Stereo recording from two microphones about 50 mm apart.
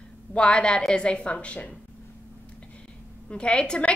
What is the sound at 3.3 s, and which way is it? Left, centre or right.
Speech, left.